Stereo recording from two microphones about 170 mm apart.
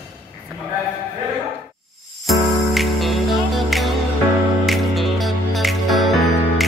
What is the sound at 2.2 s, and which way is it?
Music, centre (ahead or behind).